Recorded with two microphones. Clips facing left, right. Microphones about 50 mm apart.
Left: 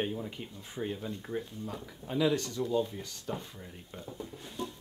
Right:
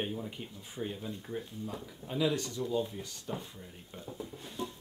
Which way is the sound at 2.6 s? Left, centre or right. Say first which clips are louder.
Left 2 dB; centre.